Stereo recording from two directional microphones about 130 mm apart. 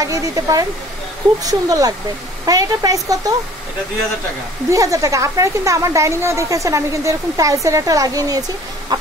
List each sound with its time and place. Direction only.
0.0 s speech: 25° right (ahead or behind)
4.6 s speech: 25° right (ahead or behind)